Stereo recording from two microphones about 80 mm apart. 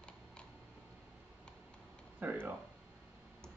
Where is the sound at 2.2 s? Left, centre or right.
Right.